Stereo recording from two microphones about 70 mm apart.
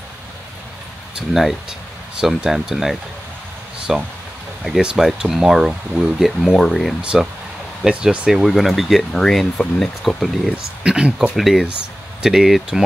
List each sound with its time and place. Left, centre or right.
1.1 s speech: centre
7.0 s speech: centre
10.8 s speech: centre
11.3 s speech: centre